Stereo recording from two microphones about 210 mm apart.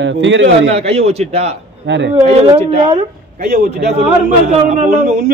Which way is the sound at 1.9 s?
60° right (ahead or behind).